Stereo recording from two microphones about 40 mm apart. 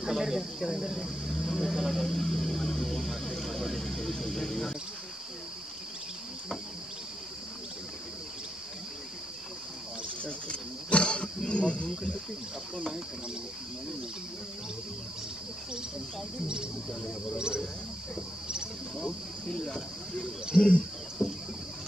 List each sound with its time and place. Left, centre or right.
0.0 s speech: centre
0.6 s speech: centre
2.0 s a sound: centre
10.2 s cricket: left
19.0 s speech: centre
20.5 s speech: left
21.2 s rowboat: centre